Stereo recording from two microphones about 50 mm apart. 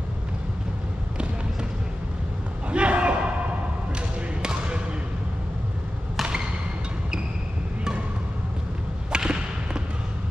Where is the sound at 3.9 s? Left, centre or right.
Centre.